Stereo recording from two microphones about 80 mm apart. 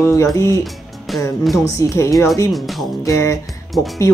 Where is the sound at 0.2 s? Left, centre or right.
Left.